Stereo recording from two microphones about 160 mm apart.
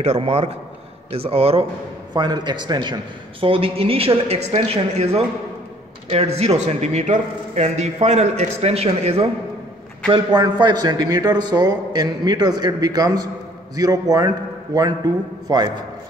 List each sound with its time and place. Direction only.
0.0 s a man's voice: 40° right (ahead or behind)
10.0 s a man's voice: 30° right (ahead or behind)